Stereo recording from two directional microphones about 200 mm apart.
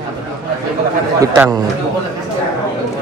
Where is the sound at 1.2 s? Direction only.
15° right (ahead or behind).